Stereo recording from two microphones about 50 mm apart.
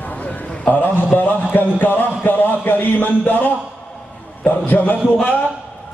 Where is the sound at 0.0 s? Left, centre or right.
Left.